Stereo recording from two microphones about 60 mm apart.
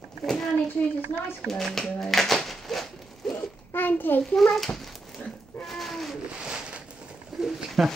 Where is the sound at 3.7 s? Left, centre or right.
Left.